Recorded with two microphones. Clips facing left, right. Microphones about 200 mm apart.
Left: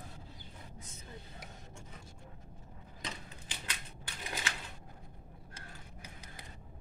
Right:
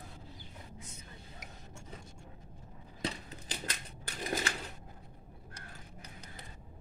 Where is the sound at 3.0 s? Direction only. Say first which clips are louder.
Right 7 dB; 40° right (ahead or behind).